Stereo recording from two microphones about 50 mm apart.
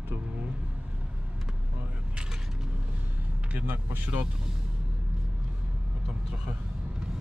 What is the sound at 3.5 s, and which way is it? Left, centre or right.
Speech, right.